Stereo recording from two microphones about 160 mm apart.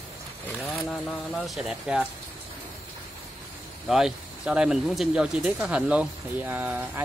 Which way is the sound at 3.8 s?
5° right (ahead or behind).